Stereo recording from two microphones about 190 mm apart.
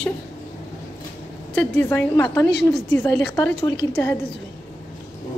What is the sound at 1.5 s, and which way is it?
A woman's voice, 10° left (ahead or behind).